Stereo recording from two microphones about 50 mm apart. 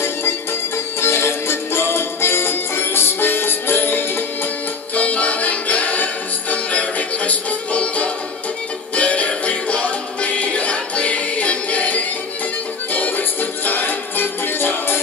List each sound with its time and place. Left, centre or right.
1.0 s music: left
4.9 s music: left